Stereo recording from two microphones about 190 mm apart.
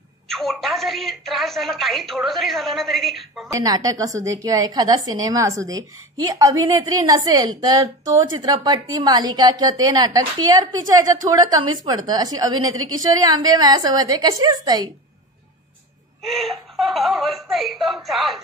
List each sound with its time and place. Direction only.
0.3 s a woman's voice: centre (ahead or behind)
3.5 s a woman's voice: 20° right (ahead or behind)
16.2 s a woman's voice: centre (ahead or behind)